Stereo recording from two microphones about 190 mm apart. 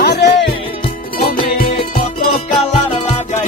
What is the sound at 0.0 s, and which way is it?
Music, 65° left (ahead or behind).